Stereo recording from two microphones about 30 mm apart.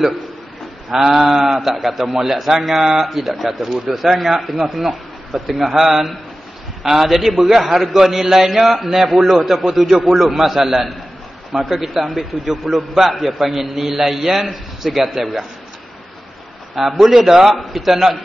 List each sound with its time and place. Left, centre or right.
0.8 s a man's voice: centre
3.1 s a man's voice: centre
8.8 s a man's voice: right
9.1 s a man's voice: centre
16.7 s a man's voice: centre